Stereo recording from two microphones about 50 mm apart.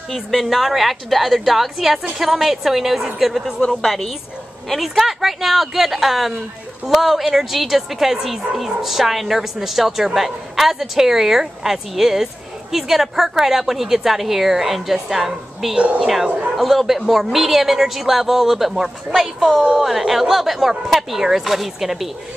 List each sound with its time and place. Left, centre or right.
0.1 s speech: centre
15.7 s speech: right
16.0 s speech: centre